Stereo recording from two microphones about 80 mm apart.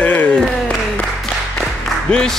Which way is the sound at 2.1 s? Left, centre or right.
Centre.